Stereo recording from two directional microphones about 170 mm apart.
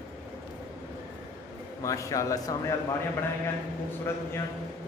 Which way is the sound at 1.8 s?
20° left (ahead or behind).